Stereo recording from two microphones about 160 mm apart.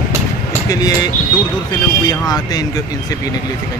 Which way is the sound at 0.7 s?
25° left (ahead or behind).